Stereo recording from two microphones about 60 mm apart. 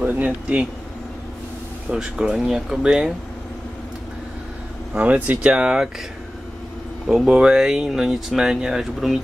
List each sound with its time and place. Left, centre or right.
0.0 s speech: right
1.9 s speech: centre
4.9 s speech: right
5.4 s speech: centre
7.1 s speech: centre